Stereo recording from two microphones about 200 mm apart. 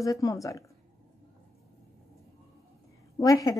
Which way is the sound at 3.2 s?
15° left (ahead or behind).